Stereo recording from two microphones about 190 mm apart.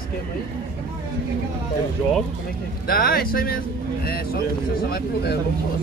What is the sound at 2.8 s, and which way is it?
Speech, 50° left (ahead or behind).